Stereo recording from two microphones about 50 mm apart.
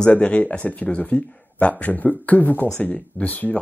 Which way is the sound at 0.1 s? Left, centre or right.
Left.